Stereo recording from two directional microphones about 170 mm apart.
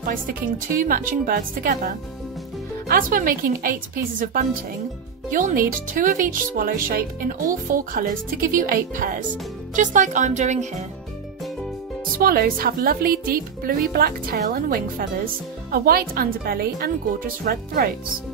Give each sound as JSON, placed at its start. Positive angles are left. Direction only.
{"t": 0.0, "sound": "speech", "side_deg": -55}
{"t": 12.2, "sound": "speech", "side_deg": -60}